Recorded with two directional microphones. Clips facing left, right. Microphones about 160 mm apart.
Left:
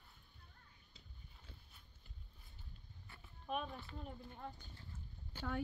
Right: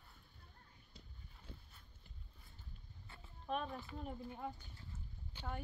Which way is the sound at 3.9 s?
5° right (ahead or behind).